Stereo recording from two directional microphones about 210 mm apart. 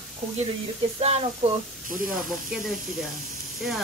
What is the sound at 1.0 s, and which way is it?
Speech, 30° right (ahead or behind).